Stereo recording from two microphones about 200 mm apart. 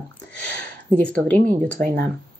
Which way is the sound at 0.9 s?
5° left (ahead or behind).